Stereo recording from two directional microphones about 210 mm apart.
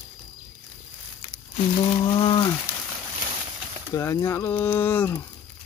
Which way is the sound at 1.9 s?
25° left (ahead or behind).